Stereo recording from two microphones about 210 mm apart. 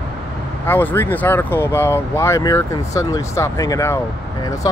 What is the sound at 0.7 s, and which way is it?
Speech, 10° left (ahead or behind).